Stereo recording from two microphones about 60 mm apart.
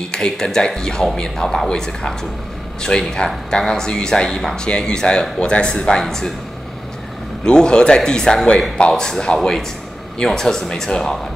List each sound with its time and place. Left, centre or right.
0.1 s speech: centre
7.4 s speech: centre